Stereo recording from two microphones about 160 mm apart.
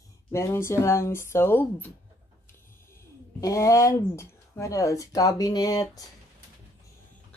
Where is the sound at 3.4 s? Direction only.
20° left (ahead or behind).